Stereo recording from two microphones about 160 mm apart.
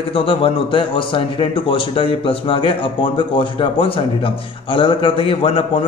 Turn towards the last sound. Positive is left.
turn(degrees=35)  # may be behind; listen again after turning